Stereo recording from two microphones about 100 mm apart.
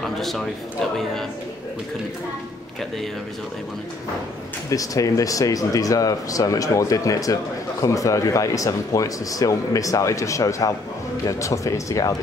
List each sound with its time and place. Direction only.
0.0 s speech: centre (ahead or behind)
4.6 s speech: 35° left (ahead or behind)